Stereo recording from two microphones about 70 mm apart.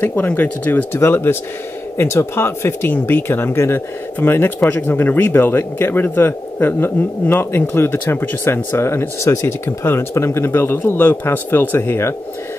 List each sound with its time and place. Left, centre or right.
0.0 s speech: left